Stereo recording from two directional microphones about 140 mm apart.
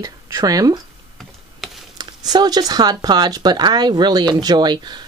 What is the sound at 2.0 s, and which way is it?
Speech, 30° right (ahead or behind).